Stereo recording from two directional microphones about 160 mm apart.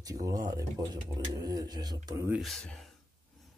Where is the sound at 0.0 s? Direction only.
20° right (ahead or behind).